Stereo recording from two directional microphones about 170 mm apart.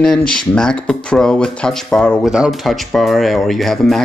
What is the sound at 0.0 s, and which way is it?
Speech, 5° left (ahead or behind).